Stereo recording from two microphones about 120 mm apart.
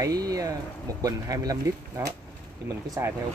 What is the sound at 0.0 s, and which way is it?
Speech, 30° right (ahead or behind).